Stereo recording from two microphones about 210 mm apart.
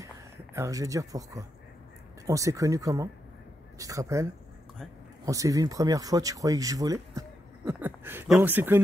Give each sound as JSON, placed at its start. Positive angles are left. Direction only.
{"t": 0.6, "sound": "speech", "side_deg": -15}